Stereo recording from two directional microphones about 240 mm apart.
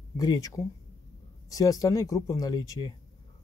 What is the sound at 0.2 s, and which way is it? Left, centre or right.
Speech, centre.